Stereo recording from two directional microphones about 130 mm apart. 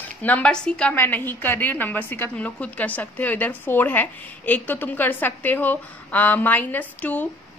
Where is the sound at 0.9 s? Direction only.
15° left (ahead or behind).